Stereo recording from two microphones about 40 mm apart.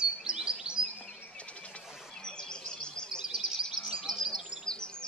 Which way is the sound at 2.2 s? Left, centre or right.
Left.